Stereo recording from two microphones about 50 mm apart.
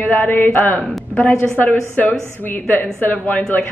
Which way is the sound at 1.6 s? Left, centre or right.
Left.